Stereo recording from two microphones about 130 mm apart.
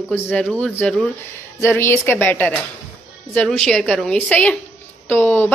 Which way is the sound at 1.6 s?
20° left (ahead or behind).